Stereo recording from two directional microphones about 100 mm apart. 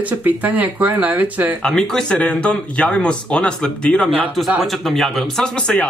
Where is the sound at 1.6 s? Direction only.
5° left (ahead or behind).